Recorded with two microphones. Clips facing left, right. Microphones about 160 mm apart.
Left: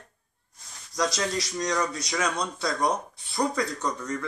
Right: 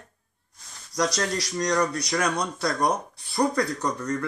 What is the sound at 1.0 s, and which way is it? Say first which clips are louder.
Speech: right 2 dB; centre (ahead or behind).